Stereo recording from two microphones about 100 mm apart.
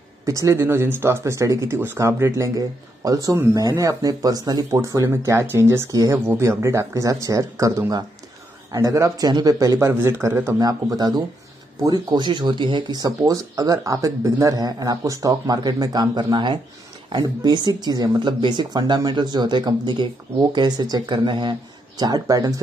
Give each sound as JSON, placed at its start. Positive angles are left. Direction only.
{"t": 0.2, "sound": "speech", "side_deg": -30}
{"t": 6.1, "sound": "speech", "side_deg": -20}
{"t": 10.6, "sound": "speech", "side_deg": -40}